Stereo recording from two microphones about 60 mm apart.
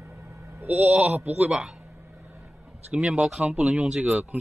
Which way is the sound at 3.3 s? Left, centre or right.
Centre.